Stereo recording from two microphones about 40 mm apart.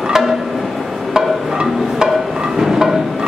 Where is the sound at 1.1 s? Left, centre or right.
Centre.